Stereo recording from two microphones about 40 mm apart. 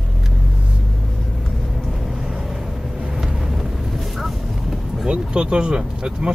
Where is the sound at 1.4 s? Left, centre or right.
Centre.